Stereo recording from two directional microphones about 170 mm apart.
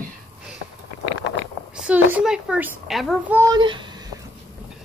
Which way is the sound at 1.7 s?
5° right (ahead or behind).